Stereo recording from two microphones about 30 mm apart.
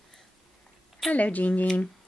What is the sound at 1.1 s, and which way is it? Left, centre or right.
Speech, left.